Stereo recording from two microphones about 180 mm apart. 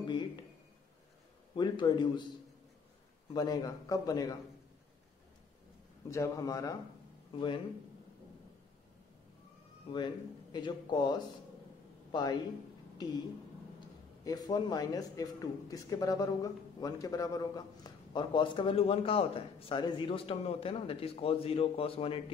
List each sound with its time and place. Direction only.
0.0 s a sound: 25° left (ahead or behind)
1.5 s speech: 25° left (ahead or behind)
3.3 s speech: 20° left (ahead or behind)
6.0 s speech: 20° left (ahead or behind)
9.9 s a man's voice: 25° left (ahead or behind)
14.2 s a man's voice: 20° left (ahead or behind)